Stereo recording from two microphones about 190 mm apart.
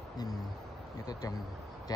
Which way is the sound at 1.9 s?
20° left (ahead or behind).